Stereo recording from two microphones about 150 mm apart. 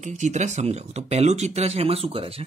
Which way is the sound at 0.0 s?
55° right (ahead or behind).